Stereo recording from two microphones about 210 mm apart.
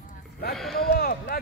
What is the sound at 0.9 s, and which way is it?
Speech, 45° left (ahead or behind).